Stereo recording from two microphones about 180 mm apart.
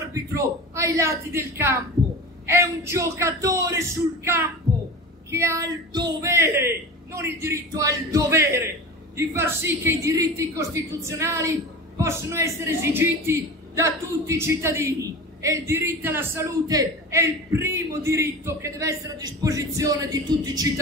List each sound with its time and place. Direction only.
0.0 s a woman's voice: 15° right (ahead or behind)